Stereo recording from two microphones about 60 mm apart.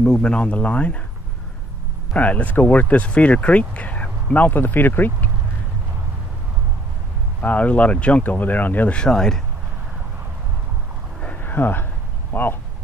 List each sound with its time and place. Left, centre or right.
0.0 s speech: centre
2.1 s speech: left
7.4 s speech: left
8.9 s speech: centre
11.4 s a sound: left